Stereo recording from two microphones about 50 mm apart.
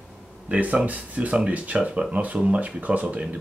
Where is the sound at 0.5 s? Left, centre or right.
Right.